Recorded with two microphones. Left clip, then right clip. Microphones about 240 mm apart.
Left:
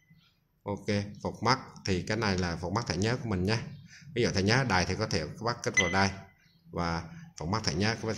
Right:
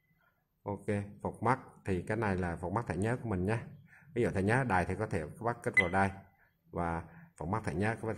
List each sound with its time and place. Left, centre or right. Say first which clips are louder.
0.7 s speech: left 4 dB; centre